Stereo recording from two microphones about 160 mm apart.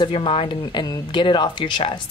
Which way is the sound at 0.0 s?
35° left (ahead or behind).